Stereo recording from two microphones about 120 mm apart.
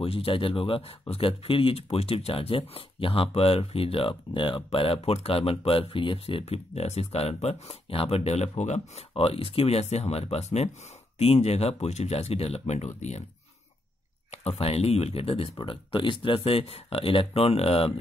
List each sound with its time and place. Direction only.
0.0 s speech: 50° left (ahead or behind); by 13.2 s 70° left (ahead or behind)
14.3 s speech: 60° left (ahead or behind)